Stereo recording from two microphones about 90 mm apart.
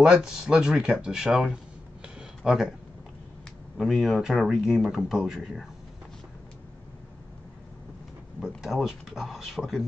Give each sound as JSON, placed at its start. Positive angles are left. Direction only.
{"t": 0.0, "sound": "speech", "side_deg": -5}
{"t": 2.1, "sound": "a sound", "side_deg": -5}
{"t": 3.7, "sound": "speech", "side_deg": 0}
{"t": 8.4, "sound": "speech", "side_deg": -5}